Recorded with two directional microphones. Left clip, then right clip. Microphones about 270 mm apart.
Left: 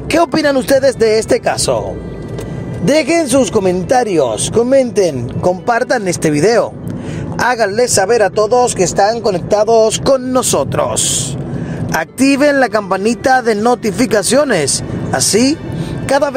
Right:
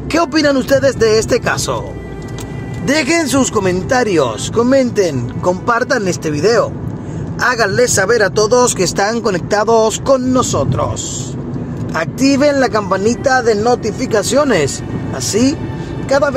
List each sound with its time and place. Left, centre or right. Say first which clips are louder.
0.1 s speech: left 1 dB; centre
2.8 s speech: left 2 dB; centre
10.0 s speech: even; left
12.0 s speech: even; left
16.1 s speech: even; left